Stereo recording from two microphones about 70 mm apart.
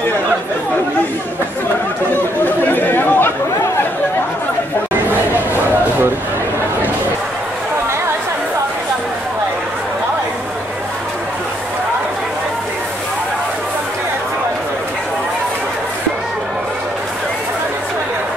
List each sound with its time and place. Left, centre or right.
2.4 s chatter: left